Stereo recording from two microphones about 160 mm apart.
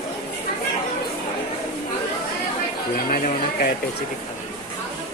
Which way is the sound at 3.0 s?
65° left (ahead or behind).